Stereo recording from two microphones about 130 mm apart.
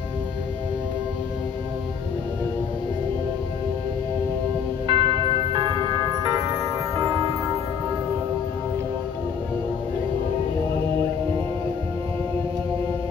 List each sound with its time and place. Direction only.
4.8 s tubular bells: 40° right (ahead or behind); by 7.3 s 25° right (ahead or behind)